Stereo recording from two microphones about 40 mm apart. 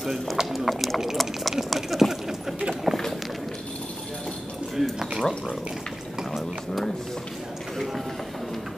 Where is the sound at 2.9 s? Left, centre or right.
Centre.